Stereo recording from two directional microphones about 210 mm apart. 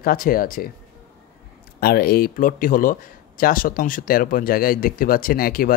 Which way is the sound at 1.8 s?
45° left (ahead or behind).